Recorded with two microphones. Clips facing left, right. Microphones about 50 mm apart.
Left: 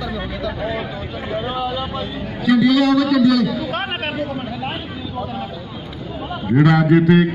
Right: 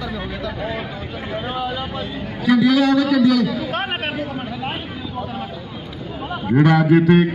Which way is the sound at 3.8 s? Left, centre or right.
Centre.